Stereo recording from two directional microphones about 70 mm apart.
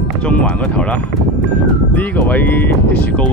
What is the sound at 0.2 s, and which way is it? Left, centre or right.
Speech, centre.